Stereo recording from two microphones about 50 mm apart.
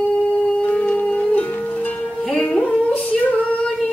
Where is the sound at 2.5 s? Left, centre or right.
Left.